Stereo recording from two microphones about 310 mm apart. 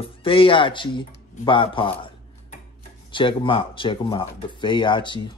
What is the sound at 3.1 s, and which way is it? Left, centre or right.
Speech, centre.